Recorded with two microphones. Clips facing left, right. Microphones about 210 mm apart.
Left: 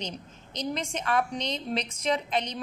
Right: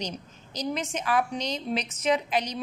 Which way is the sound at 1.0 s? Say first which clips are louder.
Right 1 dB; 5° right (ahead or behind).